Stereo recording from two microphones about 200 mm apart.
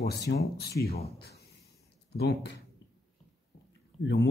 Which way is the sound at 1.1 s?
55° left (ahead or behind).